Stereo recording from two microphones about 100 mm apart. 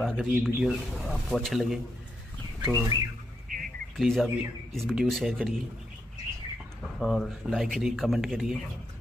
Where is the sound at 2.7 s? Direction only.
20° right (ahead or behind).